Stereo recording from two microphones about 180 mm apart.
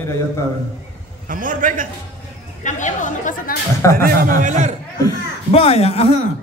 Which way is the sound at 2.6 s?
45° left (ahead or behind).